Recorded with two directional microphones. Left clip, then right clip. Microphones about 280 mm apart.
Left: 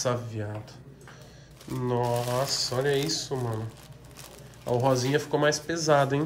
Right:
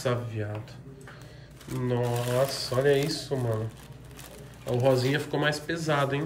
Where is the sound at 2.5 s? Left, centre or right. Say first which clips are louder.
Right 2 dB; centre.